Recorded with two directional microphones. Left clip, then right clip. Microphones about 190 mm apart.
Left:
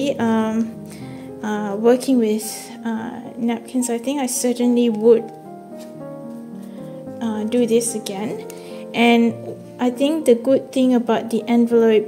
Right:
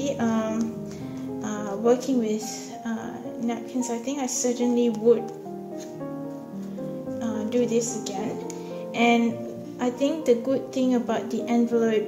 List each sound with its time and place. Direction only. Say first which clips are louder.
0.0 s speech: left 6 dB; 50° left (ahead or behind)
7.2 s a woman's voice: left 5 dB; 50° left (ahead or behind)